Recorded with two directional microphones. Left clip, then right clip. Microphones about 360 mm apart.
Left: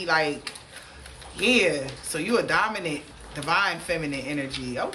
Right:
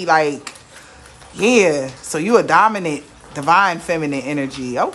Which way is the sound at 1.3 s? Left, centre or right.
Centre.